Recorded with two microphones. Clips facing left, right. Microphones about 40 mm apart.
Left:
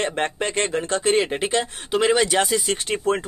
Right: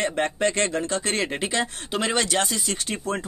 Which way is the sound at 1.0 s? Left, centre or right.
Centre.